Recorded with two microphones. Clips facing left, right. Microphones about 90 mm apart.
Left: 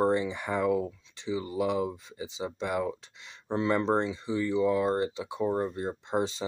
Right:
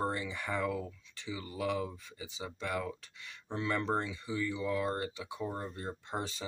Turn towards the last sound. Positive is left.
turn(degrees=20)  # may be behind; listen again after turning